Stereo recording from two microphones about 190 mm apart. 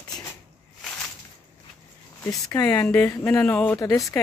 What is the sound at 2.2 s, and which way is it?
Speech, 10° left (ahead or behind).